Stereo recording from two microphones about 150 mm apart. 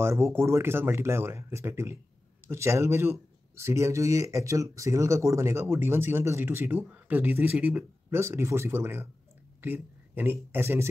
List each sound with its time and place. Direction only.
0.0 s speech: 15° right (ahead or behind)